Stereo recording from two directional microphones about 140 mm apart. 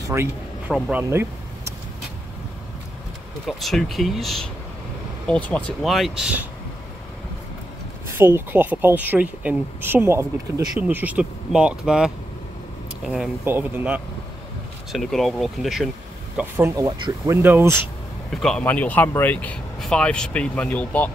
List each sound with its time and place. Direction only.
0.0 s a sound: 20° right (ahead or behind)
0.7 s speech: 10° right (ahead or behind)
3.4 s speech: centre (ahead or behind)
8.1 s speech: 15° right (ahead or behind)
14.9 s speech: centre (ahead or behind)
16.3 s speech: 20° right (ahead or behind)
18.3 s speech: 5° left (ahead or behind)